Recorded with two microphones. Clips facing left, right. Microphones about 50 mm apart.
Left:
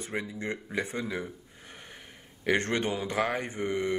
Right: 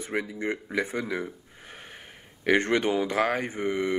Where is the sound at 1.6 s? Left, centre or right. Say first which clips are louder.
Right 5 dB; right.